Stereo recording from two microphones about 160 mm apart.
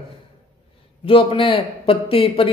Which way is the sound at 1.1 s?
35° left (ahead or behind).